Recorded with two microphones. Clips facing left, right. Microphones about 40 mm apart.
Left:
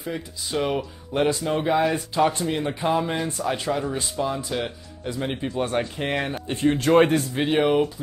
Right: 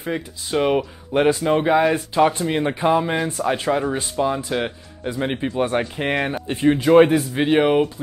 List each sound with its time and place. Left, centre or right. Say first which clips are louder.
0.0 s speech: right 4 dB; right
3.0 s speech: right 4 dB; centre
3.5 s speech: right 5 dB; right; by 7.6 s centre
7.6 s speech: right 3 dB; right